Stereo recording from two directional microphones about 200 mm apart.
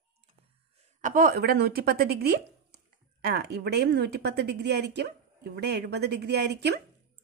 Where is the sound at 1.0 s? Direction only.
45° right (ahead or behind).